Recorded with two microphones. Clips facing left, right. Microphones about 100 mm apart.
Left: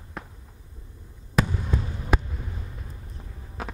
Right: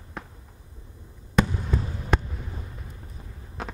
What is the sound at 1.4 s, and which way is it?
Trickle, centre (ahead or behind).